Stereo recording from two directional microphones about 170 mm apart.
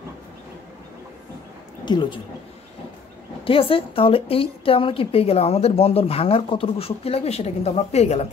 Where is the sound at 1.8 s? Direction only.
30° left (ahead or behind).